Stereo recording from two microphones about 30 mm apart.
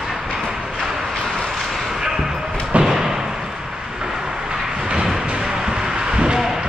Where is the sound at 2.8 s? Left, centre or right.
Centre.